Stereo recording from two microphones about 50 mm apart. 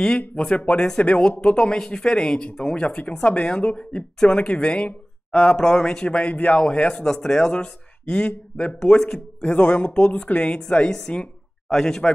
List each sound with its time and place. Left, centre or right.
0.4 s a man's voice: left
0.7 s a woman's voice: centre
5.6 s a man's voice: centre
9.4 s speech: left
9.9 s a man's voice: centre